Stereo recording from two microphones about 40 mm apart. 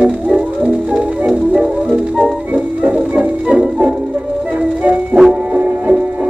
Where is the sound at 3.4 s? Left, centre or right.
Right.